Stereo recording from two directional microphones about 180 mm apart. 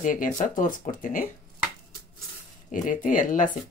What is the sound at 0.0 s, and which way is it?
Speech, 45° left (ahead or behind).